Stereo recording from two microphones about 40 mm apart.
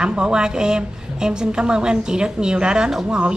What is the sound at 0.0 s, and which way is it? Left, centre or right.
Speech, right.